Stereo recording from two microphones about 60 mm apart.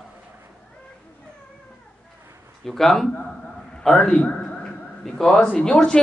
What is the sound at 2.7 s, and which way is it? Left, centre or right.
Speech, centre.